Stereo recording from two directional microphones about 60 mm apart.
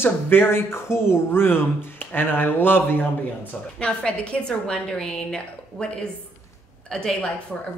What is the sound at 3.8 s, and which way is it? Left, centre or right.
A woman's voice, centre.